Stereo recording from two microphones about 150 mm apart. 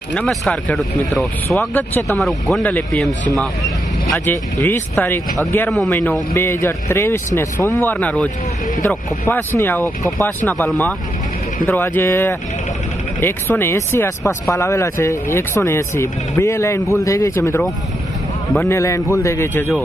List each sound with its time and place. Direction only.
0.1 s speech: 5° left (ahead or behind)
1.7 s speech: 10° left (ahead or behind)
2.1 s speech: centre (ahead or behind)
4.3 s speech: 15° left (ahead or behind)
18.7 s speech: 20° left (ahead or behind)